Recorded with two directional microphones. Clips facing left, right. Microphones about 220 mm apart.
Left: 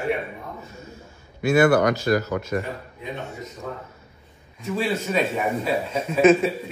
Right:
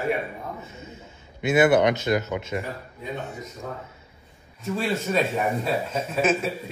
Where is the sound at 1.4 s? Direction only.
20° right (ahead or behind).